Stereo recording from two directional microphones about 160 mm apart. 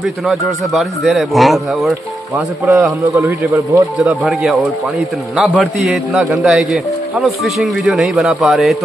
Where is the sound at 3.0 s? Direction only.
20° right (ahead or behind).